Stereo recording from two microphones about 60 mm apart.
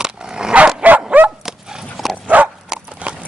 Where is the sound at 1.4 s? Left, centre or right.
Centre.